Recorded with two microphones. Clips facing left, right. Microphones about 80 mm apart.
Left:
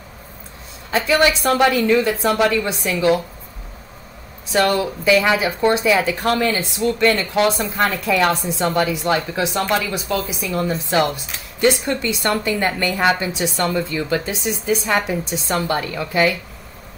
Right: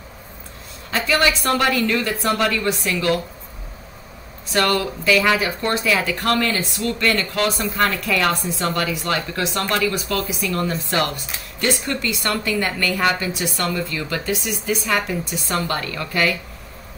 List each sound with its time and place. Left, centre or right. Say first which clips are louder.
0.9 s a woman's voice: left 3 dB; centre
4.5 s a woman's voice: left 2 dB; centre